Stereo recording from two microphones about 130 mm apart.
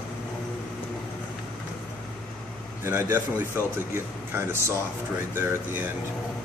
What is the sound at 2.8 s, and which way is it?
A man's voice, 20° right (ahead or behind).